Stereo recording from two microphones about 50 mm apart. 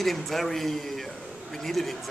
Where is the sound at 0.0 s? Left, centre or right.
Centre.